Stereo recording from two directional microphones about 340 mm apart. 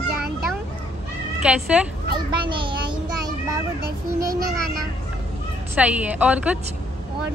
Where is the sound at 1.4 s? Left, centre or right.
Centre.